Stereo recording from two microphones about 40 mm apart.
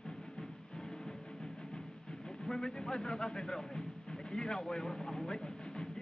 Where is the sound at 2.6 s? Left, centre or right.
Centre.